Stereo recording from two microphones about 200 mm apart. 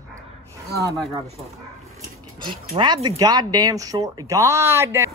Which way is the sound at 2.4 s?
20° right (ahead or behind).